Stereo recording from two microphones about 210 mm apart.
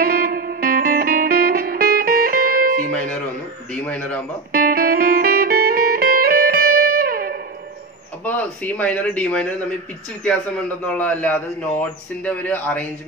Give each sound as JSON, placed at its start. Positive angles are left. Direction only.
{"t": 0.0, "sound": "music", "side_deg": -45}
{"t": 3.7, "sound": "a man's voice", "side_deg": 5}
{"t": 4.5, "sound": "music", "side_deg": -45}
{"t": 8.3, "sound": "speech", "side_deg": 5}
{"t": 10.9, "sound": "speech", "side_deg": 5}